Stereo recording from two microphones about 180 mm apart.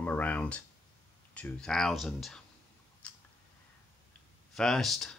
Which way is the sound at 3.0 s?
5° left (ahead or behind).